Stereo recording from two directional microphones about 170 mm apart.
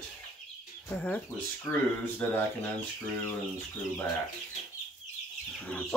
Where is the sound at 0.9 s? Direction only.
5° left (ahead or behind).